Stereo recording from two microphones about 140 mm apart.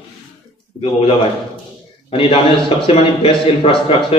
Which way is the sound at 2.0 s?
40° left (ahead or behind).